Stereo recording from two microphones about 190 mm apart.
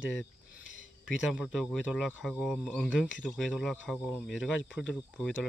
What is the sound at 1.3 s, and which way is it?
Speech, 5° left (ahead or behind).